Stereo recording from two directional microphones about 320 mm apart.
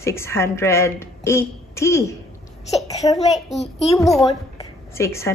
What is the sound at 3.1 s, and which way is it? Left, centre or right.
Speech, centre.